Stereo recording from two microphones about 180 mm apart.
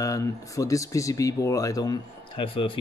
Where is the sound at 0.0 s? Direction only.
20° left (ahead or behind).